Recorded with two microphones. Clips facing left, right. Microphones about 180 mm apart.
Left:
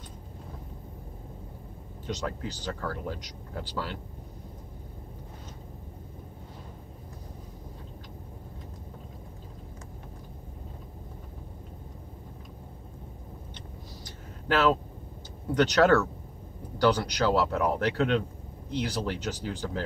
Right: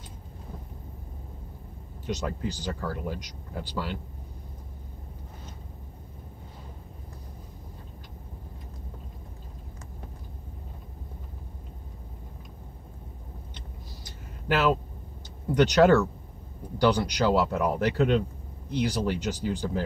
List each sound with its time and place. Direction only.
2.0 s speech: 10° right (ahead or behind)
14.5 s speech: 15° right (ahead or behind)